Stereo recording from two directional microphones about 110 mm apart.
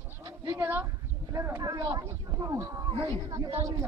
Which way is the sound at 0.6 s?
20° right (ahead or behind).